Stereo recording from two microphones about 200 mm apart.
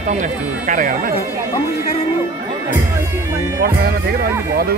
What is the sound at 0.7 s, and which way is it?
Speech, 40° right (ahead or behind).